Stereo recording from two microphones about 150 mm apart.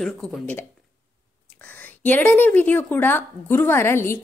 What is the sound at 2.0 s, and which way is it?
A woman's voice, 10° left (ahead or behind).